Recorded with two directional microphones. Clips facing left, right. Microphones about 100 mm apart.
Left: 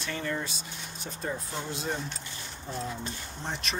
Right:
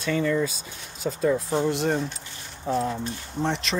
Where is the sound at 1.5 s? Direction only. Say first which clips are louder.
Right 11 dB; 75° right (ahead or behind).